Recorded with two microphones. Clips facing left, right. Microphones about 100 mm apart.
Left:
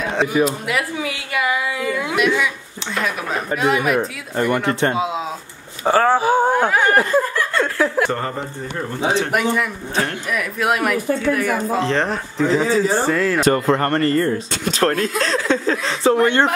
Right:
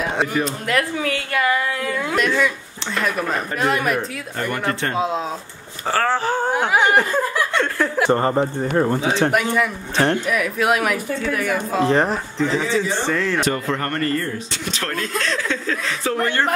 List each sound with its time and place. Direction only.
0.0 s a sound: 5° right (ahead or behind)
0.3 s speech: 5° left (ahead or behind)
4.6 s speech: 20° left (ahead or behind)
4.9 s speech: 5° left (ahead or behind)
5.9 s speech: 15° left (ahead or behind)
6.7 s speech: 10° right (ahead or behind)
8.1 s speech: 25° right (ahead or behind)
8.4 s speech: 45° right (ahead or behind)
9.3 s speech: centre (ahead or behind)
12.6 s a man's voice: 40° left (ahead or behind)
13.1 s speech: 5° left (ahead or behind)
13.5 s a man's voice: 40° left (ahead or behind); by 16.4 s 20° left (ahead or behind)